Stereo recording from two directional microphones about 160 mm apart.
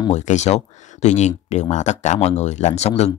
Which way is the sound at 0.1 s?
45° left (ahead or behind).